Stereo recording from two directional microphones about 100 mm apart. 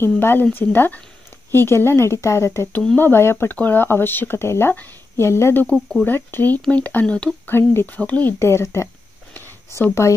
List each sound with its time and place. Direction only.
0.0 s speech: 20° left (ahead or behind)
7.4 s speech: 20° left (ahead or behind)
8.4 s speech: 25° left (ahead or behind)
9.3 s a sound: 25° left (ahead or behind)